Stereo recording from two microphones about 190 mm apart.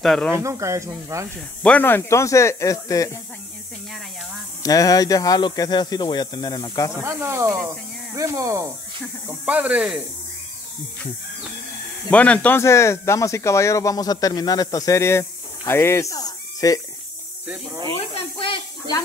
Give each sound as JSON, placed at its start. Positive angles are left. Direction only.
{"t": 0.0, "sound": "speech", "side_deg": 0}
{"t": 0.3, "sound": "speech", "side_deg": -15}
{"t": 1.6, "sound": "speech", "side_deg": 10}
{"t": 4.6, "sound": "speech", "side_deg": 20}
{"t": 7.0, "sound": "speech", "side_deg": -15}
{"t": 12.1, "sound": "speech", "side_deg": 5}
{"t": 17.9, "sound": "snake", "side_deg": 30}